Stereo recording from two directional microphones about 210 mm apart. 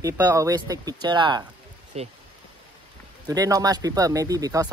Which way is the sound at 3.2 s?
15° right (ahead or behind).